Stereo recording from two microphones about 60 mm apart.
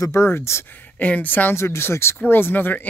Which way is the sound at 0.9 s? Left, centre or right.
Left.